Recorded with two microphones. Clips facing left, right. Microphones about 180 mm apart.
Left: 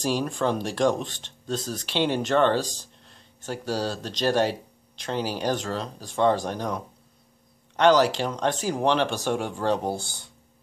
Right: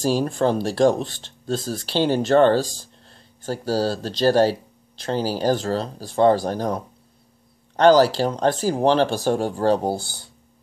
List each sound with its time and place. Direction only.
0.0 s speech: 35° right (ahead or behind)